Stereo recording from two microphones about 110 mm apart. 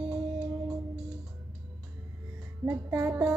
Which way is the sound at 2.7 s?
10° right (ahead or behind).